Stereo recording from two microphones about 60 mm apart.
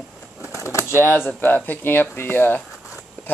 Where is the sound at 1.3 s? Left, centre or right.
Left.